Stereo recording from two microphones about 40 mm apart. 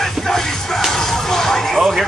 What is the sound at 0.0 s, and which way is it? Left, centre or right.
Music, centre.